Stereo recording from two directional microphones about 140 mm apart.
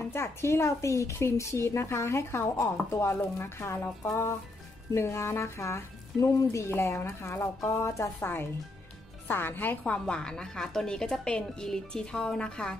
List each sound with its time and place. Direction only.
0.0 s a woman's voice: 20° left (ahead or behind)